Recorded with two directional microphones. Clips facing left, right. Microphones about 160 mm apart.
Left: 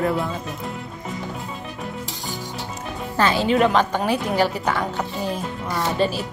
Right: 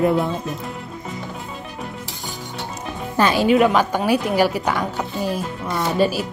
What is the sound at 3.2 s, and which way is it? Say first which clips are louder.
A woman's voice: right 3 dB; 15° right (ahead or behind).